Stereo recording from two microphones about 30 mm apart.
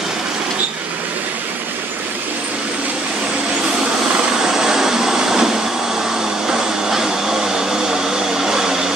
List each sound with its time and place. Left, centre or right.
4.4 s vehicle: centre
6.4 s vacuum cleaner: centre